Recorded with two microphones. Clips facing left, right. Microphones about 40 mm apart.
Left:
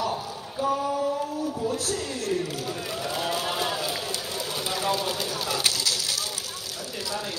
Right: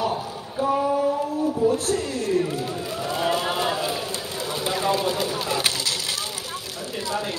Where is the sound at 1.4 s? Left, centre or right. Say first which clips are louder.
Right 7 dB; right.